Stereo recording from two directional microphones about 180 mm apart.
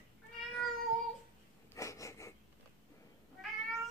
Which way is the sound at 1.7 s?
15° left (ahead or behind).